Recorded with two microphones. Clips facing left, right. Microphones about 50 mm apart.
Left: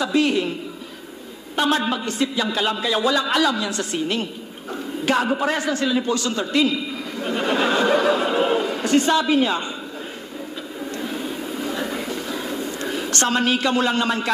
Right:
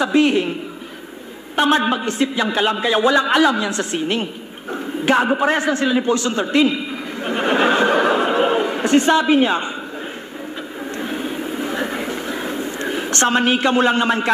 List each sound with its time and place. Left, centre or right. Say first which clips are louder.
0.0 s a man's voice: right 4 dB; right
1.6 s a man's voice: right 4 dB; right
11.0 s a sound: right 4 dB; right